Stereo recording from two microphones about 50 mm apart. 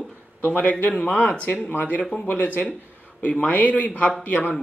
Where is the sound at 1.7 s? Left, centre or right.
Left.